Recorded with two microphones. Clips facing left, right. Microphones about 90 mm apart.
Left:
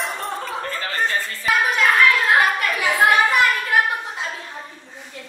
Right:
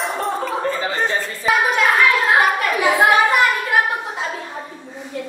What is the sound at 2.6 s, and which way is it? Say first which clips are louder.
Speech: right 4 dB; 30° right (ahead or behind).